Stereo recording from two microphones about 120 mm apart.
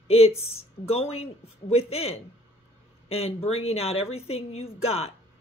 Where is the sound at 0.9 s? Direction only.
55° left (ahead or behind).